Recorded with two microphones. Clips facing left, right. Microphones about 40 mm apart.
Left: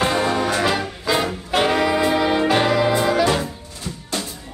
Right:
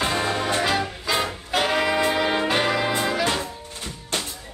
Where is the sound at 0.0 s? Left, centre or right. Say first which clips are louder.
Left 4 dB; centre.